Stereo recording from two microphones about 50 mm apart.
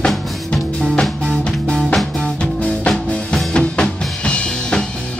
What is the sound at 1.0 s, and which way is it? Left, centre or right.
Music, centre.